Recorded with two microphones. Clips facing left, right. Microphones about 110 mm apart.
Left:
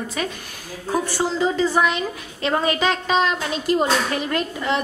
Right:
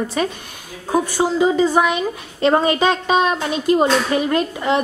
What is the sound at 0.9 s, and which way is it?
A woman's voice, 15° right (ahead or behind).